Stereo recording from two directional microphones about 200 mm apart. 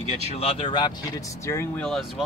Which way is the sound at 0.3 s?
30° left (ahead or behind).